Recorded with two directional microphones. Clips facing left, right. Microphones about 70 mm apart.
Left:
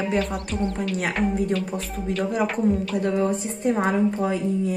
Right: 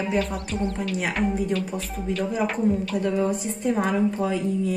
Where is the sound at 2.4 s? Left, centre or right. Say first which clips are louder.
Even; centre.